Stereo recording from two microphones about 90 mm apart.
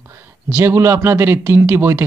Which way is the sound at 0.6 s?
30° right (ahead or behind).